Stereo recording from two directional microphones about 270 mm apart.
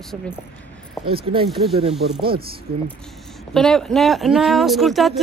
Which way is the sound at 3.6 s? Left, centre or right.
Centre.